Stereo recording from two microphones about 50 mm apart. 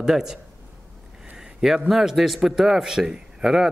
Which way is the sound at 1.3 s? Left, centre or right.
Centre.